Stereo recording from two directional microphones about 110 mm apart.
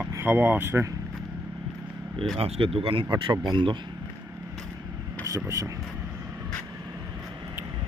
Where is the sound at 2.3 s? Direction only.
60° right (ahead or behind).